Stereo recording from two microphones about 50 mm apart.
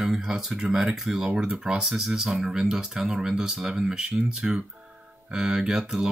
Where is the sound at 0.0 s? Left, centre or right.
Centre.